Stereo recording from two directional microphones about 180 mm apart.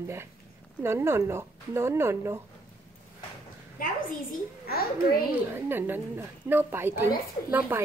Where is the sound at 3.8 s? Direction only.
50° left (ahead or behind).